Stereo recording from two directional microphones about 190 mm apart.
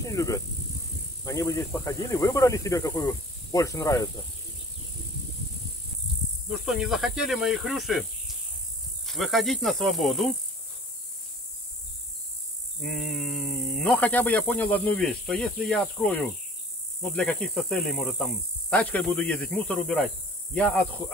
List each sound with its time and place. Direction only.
0.0 s snake: 15° left (ahead or behind)
1.2 s speech: 15° left (ahead or behind)
6.5 s speech: centre (ahead or behind)
9.0 s speech: centre (ahead or behind)
12.8 s speech: centre (ahead or behind)